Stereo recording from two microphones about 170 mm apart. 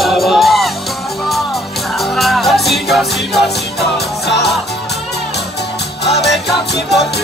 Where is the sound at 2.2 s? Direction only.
Centre (ahead or behind).